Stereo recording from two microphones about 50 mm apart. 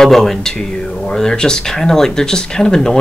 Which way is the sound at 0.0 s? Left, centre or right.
Centre.